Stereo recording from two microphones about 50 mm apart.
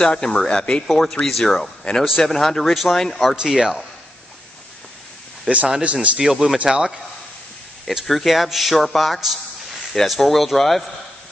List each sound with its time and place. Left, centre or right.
0.0 s a man's voice: centre
3.3 s speech: centre
5.7 s speech: right
6.1 s speech: centre
8.1 s a man's voice: centre